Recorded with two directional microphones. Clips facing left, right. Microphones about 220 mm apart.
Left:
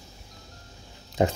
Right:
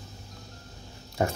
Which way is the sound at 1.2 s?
20° left (ahead or behind).